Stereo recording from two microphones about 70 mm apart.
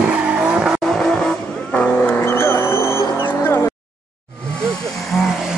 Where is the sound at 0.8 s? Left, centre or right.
Centre.